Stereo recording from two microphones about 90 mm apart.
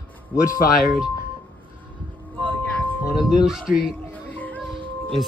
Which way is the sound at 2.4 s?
20° left (ahead or behind).